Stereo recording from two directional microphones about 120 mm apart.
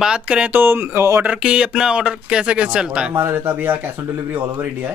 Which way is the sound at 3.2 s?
20° right (ahead or behind).